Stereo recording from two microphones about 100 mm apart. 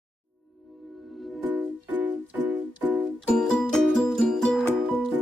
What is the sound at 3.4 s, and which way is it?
Music, 5° left (ahead or behind).